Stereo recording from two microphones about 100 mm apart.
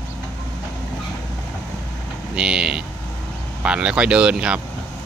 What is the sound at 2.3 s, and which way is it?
Speech, 10° right (ahead or behind).